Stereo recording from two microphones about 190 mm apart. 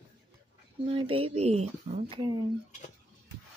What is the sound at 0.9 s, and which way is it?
Speech, 30° right (ahead or behind).